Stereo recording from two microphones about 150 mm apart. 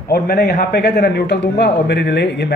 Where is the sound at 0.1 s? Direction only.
90° left.